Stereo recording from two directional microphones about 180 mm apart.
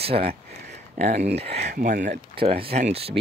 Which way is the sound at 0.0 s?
35° right (ahead or behind).